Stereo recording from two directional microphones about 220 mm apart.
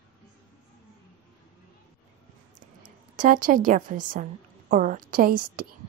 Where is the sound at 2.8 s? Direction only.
35° right (ahead or behind).